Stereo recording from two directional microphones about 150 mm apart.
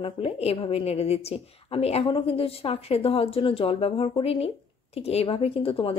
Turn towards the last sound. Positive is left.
turn(degrees=40)  # may be behind; listen again after turning